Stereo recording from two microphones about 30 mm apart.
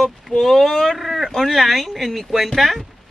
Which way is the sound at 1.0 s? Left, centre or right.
Centre.